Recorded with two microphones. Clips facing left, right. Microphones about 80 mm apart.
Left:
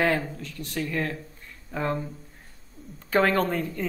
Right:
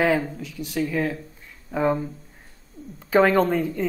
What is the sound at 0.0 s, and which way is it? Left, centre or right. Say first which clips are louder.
Speech: right 3 dB; centre.